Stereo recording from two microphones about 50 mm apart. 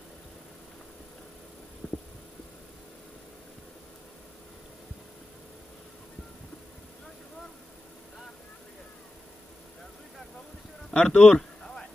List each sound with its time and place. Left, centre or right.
1.8 s heart sounds: centre
10.9 s speech: left
11.3 s a sound: centre